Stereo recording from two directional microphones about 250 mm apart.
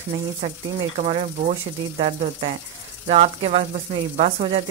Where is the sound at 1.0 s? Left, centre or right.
Right.